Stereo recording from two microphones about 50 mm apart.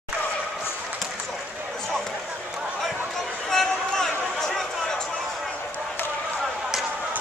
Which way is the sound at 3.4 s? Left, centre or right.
Centre.